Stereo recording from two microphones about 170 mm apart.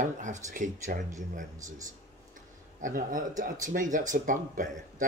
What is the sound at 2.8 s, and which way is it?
Speech, 50° right (ahead or behind).